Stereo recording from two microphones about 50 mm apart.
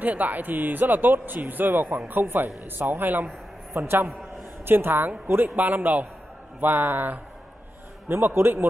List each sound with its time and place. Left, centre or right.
0.0 s a man's voice: right
8.1 s a man's voice: right